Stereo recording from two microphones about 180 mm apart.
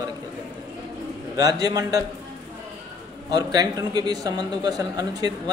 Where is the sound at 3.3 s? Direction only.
20° right (ahead or behind).